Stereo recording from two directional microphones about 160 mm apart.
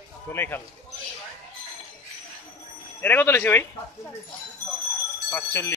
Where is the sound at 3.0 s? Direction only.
15° left (ahead or behind).